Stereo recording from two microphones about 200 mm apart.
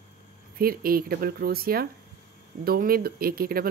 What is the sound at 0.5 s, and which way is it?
Speech, 45° right (ahead or behind).